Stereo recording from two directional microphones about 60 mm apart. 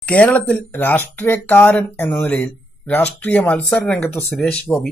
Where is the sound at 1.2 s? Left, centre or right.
Left.